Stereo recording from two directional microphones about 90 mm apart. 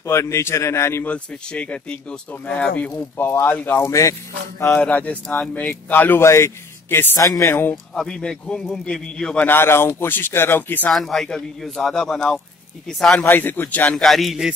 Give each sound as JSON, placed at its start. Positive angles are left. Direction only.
{"t": 0.0, "sound": "speech", "side_deg": 30}
{"t": 1.0, "sound": "speech", "side_deg": 15}
{"t": 4.7, "sound": "speech", "side_deg": 15}
{"t": 6.2, "sound": "speech", "side_deg": 30}
{"t": 7.7, "sound": "speech", "side_deg": 5}
{"t": 9.5, "sound": "speech", "side_deg": 25}
{"t": 10.9, "sound": "a man's voice", "side_deg": 0}
{"t": 13.2, "sound": "speech", "side_deg": 25}
{"t": 13.9, "sound": "a man's voice", "side_deg": 0}